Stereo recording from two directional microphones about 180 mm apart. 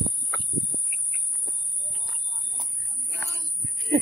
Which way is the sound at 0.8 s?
5° left (ahead or behind).